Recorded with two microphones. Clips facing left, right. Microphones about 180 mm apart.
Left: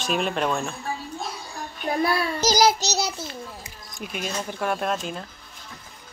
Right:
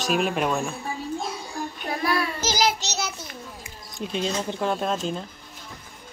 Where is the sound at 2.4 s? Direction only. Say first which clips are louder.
Left 5 dB; 40° left (ahead or behind).